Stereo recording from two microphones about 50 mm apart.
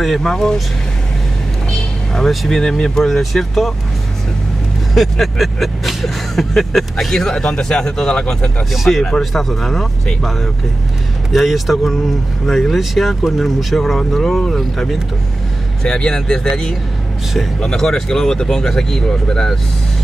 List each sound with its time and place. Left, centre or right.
0.0 s speech: centre
2.1 s speech: centre
4.9 s speech: centre
8.7 s speech: centre
15.8 s speech: centre